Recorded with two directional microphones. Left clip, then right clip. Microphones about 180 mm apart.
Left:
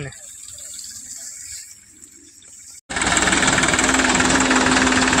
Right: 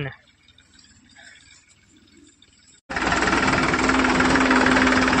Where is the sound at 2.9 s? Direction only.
20° left (ahead or behind).